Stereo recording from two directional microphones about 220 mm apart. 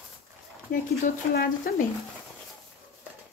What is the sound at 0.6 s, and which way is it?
Speech, 40° left (ahead or behind).